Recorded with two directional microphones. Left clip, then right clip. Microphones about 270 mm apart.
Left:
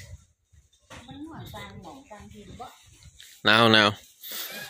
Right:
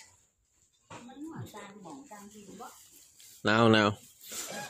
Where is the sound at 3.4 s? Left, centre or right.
Centre.